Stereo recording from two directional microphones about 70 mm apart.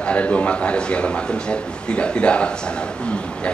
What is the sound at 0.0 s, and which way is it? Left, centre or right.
A man's voice, centre.